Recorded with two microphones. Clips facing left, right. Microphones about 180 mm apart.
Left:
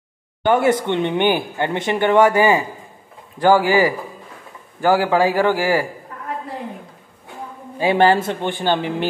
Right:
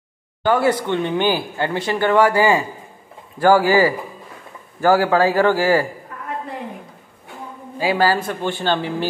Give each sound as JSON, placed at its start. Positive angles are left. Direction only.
{"t": 0.4, "sound": "a man's voice", "side_deg": 25}
{"t": 7.8, "sound": "speech", "side_deg": 25}